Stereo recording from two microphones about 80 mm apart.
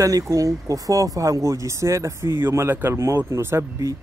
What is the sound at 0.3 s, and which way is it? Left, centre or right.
Speech, right.